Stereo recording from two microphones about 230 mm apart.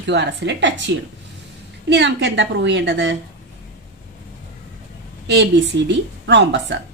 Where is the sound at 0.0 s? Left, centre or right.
Right.